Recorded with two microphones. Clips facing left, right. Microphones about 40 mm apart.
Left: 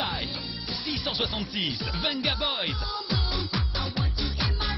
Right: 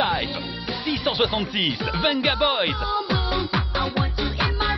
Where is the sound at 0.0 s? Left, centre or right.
Right.